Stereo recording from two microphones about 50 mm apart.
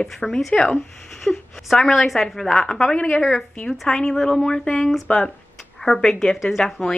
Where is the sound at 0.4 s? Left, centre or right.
Centre.